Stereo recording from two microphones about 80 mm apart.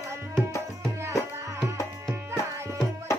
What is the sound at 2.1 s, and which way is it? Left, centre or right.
Tabla, right.